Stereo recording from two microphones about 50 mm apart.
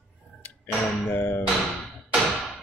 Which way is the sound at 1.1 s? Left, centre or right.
Left.